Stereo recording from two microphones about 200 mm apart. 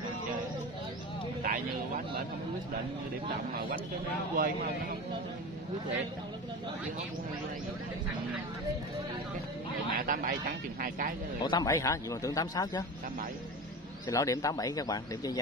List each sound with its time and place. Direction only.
1.4 s speech: 45° right (ahead or behind)
4.4 s speech: 45° right (ahead or behind)
9.9 s speech: 45° right (ahead or behind)
11.4 s speech: 20° left (ahead or behind)
14.0 s speech: 15° left (ahead or behind)